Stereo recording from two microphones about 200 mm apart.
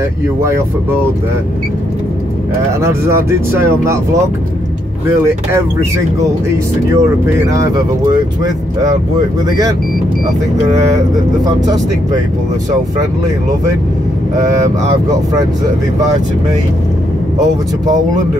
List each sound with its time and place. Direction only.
2.8 s speech: 15° right (ahead or behind)
6.9 s speech: 15° right (ahead or behind)
11.4 s speech: 20° right (ahead or behind)
15.3 s speech: 15° right (ahead or behind)
17.8 s speech: 35° right (ahead or behind)